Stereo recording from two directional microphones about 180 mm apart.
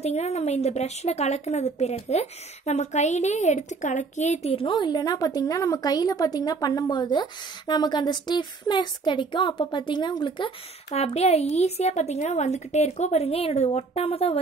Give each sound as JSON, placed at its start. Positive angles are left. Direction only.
{"t": 0.0, "sound": "a woman's voice", "side_deg": 35}